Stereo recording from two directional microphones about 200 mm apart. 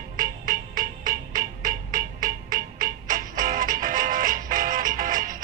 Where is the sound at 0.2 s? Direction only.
45° right (ahead or behind).